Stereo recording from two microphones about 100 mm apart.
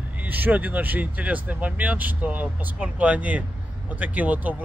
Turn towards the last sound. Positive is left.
turn(degrees=-15)  # may be behind; listen again after turning